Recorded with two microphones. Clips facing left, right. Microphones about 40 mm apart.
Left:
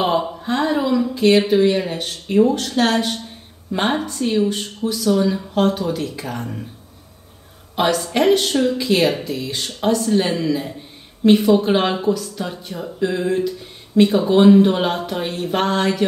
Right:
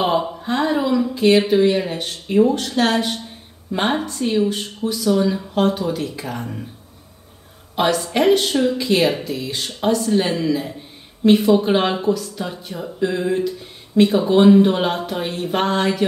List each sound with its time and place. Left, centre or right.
0.0 s speech: centre
7.7 s speech: centre